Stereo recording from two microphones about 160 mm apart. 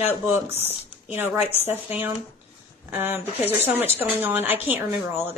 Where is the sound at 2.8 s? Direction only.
10° right (ahead or behind).